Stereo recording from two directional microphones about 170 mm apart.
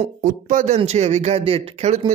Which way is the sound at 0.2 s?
45° right (ahead or behind).